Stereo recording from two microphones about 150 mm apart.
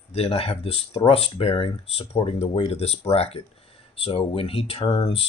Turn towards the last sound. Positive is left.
turn(degrees=35)  # may be behind; listen again after turning